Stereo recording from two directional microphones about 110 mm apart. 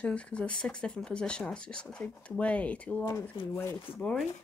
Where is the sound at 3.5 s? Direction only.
25° left (ahead or behind).